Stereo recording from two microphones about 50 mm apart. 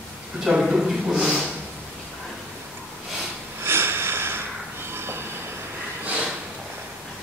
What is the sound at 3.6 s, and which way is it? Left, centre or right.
Sniff, right.